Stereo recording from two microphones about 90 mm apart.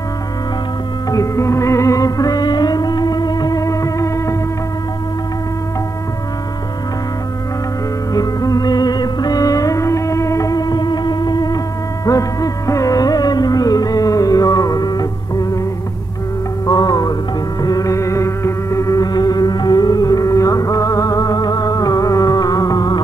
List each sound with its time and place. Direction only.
1.1 s music: 35° left (ahead or behind)
8.1 s music: 45° left (ahead or behind)
16.6 s music: 45° left (ahead or behind)